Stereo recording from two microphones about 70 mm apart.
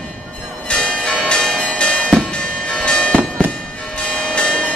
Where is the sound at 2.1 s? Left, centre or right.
Centre.